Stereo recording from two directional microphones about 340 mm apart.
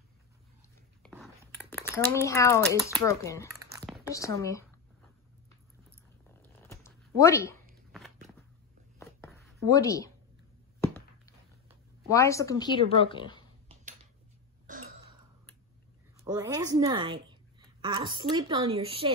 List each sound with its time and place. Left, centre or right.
1.0 s speech: centre
6.7 s a sound: centre
8.9 s writing: centre
9.7 s speech: centre
12.1 s speech: centre
14.8 s throat clearing: right
16.3 s a woman's voice: centre